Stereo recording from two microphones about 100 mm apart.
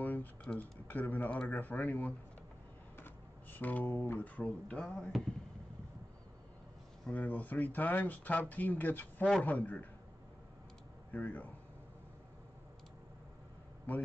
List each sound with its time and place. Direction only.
0.0 s typing: 15° left (ahead or behind)
0.4 s speech: 10° left (ahead or behind)
3.5 s speech: 20° left (ahead or behind)
7.1 s speech: 15° left (ahead or behind)
11.1 s speech: 15° left (ahead or behind)